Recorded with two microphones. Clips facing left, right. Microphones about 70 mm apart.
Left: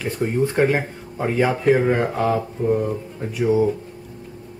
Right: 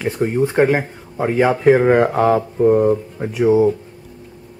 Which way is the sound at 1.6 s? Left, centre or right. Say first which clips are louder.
Right 7 dB; right.